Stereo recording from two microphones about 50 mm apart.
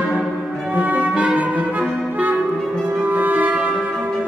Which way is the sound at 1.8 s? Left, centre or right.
Right.